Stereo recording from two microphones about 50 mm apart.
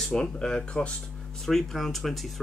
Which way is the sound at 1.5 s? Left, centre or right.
Centre.